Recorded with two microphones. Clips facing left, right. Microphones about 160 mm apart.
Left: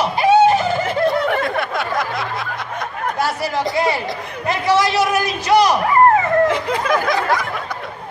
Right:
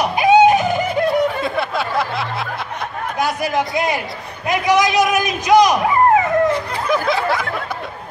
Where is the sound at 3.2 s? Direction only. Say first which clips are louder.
Right 3 dB; 15° right (ahead or behind).